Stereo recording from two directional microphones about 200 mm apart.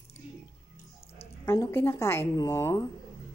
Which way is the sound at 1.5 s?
15° left (ahead or behind).